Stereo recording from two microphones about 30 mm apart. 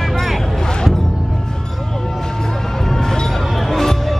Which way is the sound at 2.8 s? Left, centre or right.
Centre.